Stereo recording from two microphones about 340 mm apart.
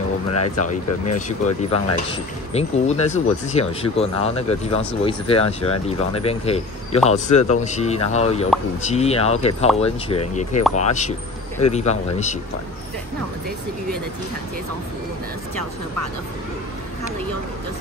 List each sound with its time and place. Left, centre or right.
0.3 s speech: left
2.5 s speech: centre